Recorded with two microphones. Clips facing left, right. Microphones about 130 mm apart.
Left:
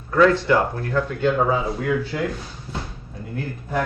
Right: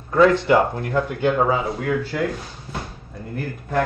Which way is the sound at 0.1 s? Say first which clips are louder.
Right 1 dB; 20° right (ahead or behind).